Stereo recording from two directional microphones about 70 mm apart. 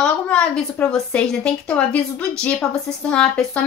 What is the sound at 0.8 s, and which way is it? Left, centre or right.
A woman's voice, left.